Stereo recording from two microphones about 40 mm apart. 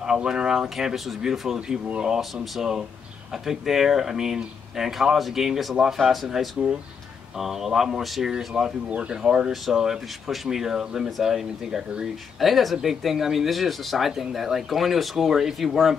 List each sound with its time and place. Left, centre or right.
0.0 s speech: centre
3.4 s speech: centre